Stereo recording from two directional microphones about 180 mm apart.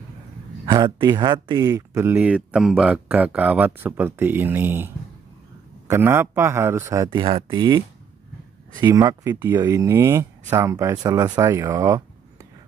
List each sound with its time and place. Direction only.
0.7 s speech: 25° right (ahead or behind)
8.8 s speech: 20° right (ahead or behind)